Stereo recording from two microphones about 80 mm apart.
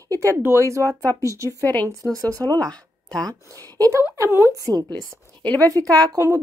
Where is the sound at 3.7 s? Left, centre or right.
Right.